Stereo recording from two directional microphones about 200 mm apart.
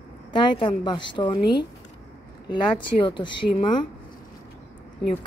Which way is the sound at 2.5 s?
25° left (ahead or behind).